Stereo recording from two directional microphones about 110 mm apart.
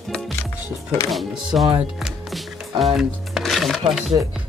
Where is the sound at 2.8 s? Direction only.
5° right (ahead or behind).